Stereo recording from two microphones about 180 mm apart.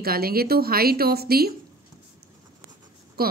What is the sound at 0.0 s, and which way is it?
Speech, 55° right (ahead or behind).